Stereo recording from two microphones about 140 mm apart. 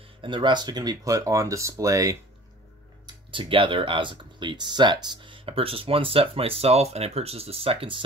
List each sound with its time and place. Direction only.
0.2 s speech: 35° right (ahead or behind)
3.3 s speech: 35° right (ahead or behind)